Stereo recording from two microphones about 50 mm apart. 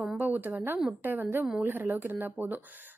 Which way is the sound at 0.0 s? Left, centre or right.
Right.